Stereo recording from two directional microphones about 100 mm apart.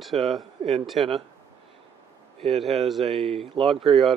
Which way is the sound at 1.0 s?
80° right.